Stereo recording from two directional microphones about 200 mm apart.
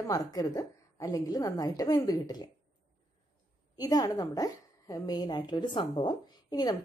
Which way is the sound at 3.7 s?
20° left (ahead or behind).